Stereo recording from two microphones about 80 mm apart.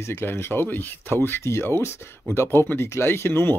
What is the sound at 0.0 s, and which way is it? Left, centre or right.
Speech, left.